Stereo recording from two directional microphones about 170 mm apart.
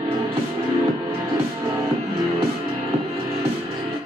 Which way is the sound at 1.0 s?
25° right (ahead or behind).